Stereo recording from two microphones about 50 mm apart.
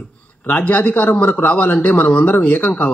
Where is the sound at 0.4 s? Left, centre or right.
Left.